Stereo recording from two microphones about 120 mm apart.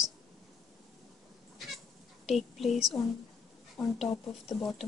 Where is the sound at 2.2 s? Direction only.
Centre (ahead or behind).